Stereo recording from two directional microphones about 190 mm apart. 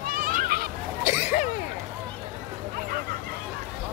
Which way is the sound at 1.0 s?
45° left (ahead or behind).